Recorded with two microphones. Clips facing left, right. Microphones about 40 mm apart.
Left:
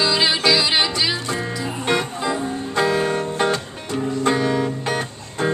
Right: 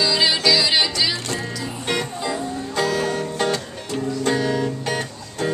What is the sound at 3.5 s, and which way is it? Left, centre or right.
Music, centre.